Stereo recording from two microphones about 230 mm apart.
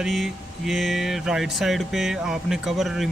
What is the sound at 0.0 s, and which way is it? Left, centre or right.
Speech, centre.